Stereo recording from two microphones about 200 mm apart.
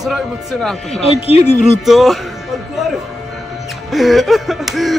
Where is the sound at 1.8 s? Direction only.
Centre (ahead or behind).